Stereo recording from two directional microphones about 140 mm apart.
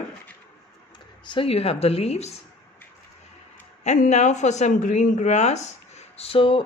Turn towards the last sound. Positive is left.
turn(degrees=40)  # may be behind; listen again after turning